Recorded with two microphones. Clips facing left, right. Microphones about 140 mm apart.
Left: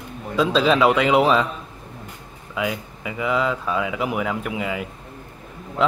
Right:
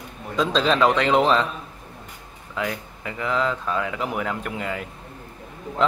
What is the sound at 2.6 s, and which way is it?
Speech, 5° left (ahead or behind).